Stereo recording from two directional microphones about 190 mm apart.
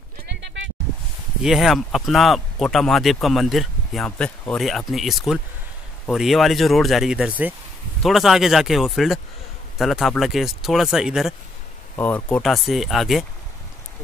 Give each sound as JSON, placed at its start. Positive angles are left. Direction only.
{"t": 0.3, "sound": "a sound", "side_deg": -70}
{"t": 1.4, "sound": "speech", "side_deg": 0}
{"t": 12.0, "sound": "speech", "side_deg": 5}